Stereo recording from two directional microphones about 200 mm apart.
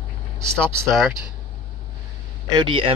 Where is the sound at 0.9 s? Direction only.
Centre (ahead or behind).